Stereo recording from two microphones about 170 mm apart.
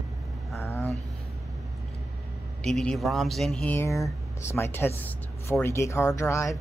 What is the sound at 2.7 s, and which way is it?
Speech, centre (ahead or behind).